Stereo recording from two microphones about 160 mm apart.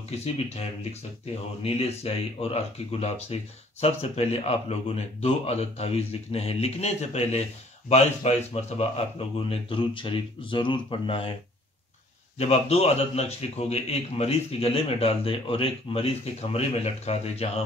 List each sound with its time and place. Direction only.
0.1 s a man's voice: 40° left (ahead or behind)
12.4 s a man's voice: 40° left (ahead or behind)